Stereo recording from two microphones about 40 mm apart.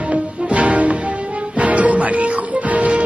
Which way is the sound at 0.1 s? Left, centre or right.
Right.